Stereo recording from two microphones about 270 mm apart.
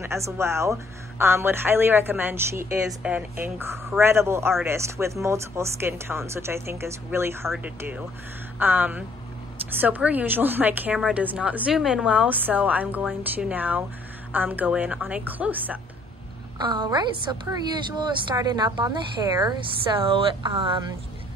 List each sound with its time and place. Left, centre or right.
0.0 s a woman's voice: centre
16.5 s speech: centre